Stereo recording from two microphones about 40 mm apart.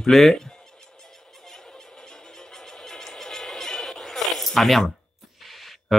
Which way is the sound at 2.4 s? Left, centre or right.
Centre.